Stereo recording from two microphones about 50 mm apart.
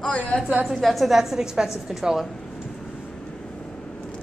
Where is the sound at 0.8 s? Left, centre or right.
Centre.